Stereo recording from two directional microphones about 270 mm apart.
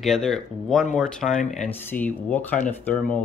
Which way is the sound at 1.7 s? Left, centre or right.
Centre.